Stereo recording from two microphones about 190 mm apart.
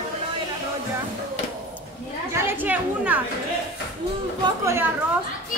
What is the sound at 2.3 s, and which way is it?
Chatter, 10° right (ahead or behind).